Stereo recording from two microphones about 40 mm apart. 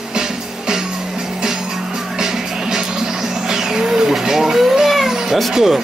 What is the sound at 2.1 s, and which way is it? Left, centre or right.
Music, centre.